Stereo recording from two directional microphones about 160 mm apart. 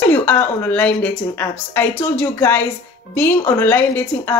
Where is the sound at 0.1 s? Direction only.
10° left (ahead or behind).